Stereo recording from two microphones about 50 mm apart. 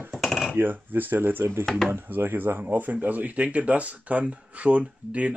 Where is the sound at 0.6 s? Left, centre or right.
Right.